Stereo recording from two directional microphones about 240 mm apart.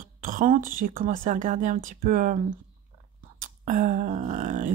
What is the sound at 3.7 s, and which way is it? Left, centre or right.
Speech, right.